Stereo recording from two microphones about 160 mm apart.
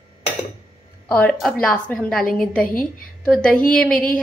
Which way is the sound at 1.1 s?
5° left (ahead or behind).